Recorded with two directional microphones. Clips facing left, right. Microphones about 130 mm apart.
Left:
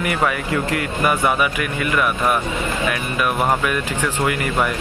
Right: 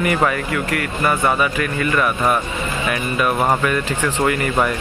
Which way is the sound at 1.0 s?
10° left (ahead or behind).